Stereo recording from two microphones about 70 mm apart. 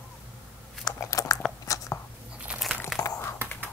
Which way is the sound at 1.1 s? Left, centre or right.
Left.